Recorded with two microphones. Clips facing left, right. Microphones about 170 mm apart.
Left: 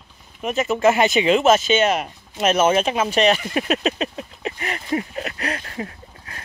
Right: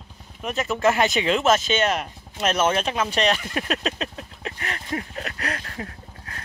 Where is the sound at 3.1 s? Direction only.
5° left (ahead or behind).